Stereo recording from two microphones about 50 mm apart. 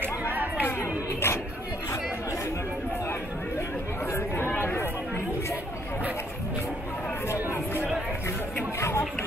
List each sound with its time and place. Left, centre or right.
0.2 s chatter: right
0.6 s a sound: left
3.1 s chatter: left
4.5 s chatter: left
4.7 s chatter: left
8.7 s chatter: left